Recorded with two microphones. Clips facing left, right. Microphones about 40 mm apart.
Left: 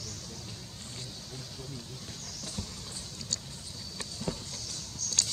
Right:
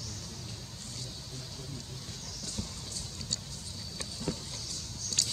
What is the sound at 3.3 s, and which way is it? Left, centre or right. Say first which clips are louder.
Vehicle: left 1 dB; centre.